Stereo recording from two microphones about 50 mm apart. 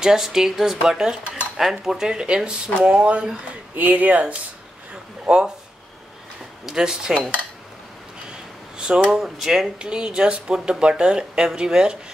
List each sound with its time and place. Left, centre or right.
0.0 s speech: centre
3.7 s speech: right
6.6 s speech: centre
8.7 s a sound: centre
9.1 s speech: centre
9.8 s speech: centre